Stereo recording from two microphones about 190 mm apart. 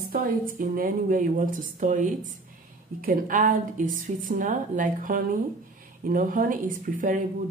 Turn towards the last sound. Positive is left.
turn(degrees=-45)  # may be behind; listen again after turning